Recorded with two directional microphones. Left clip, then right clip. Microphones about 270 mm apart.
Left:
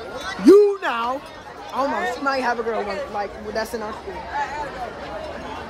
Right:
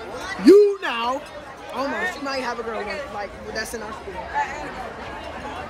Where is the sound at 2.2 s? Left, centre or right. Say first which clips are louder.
Left 5 dB; centre.